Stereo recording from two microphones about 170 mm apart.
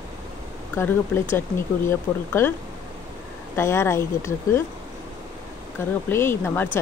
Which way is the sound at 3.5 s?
15° left (ahead or behind).